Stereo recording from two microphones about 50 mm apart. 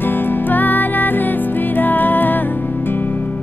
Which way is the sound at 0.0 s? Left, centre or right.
Left.